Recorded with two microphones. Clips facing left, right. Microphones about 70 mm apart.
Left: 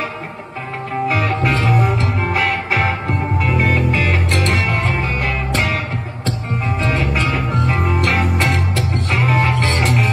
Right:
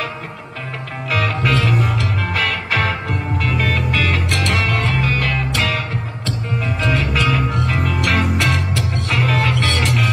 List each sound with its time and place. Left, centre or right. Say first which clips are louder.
1.0 s music: left 1 dB; left
3.4 s music: left 3 dB; left
6.8 s music: right 1 dB; left
7.9 s music: left 1 dB; left
9.2 s music: left 2 dB; centre
9.6 s music: left 1 dB; left